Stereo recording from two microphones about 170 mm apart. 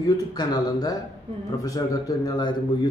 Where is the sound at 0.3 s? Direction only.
25° left (ahead or behind).